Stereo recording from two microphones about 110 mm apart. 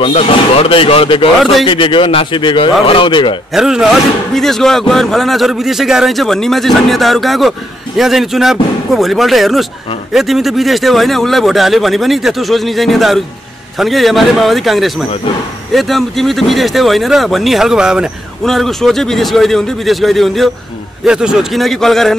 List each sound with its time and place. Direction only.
0.0 s speech: 65° left (ahead or behind)
1.4 s a man's voice: centre (ahead or behind)
1.7 s speech: 50° left (ahead or behind)
3.5 s a man's voice: 5° right (ahead or behind)